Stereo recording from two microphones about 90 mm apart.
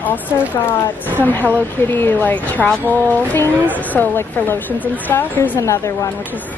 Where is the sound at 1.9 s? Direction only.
20° left (ahead or behind).